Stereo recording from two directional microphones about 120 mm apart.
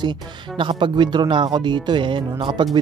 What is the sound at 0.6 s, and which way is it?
Speech, 45° right (ahead or behind).